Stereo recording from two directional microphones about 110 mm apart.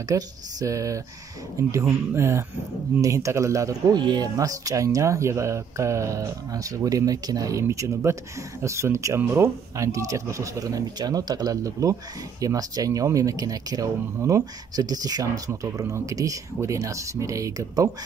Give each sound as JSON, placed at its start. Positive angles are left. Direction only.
{"t": 0.1, "sound": "speech", "side_deg": -30}